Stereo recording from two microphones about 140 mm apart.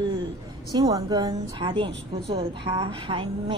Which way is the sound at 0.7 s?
30° right (ahead or behind).